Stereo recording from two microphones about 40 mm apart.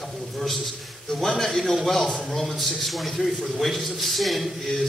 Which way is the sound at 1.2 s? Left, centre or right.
Centre.